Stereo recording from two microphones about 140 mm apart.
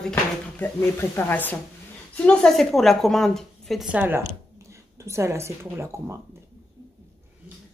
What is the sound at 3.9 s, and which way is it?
Speech, 15° right (ahead or behind).